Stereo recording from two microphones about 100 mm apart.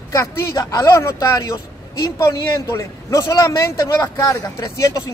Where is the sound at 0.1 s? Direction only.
30° left (ahead or behind).